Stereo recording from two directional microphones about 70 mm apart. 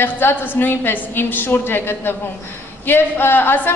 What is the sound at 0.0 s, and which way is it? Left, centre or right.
Speech, left.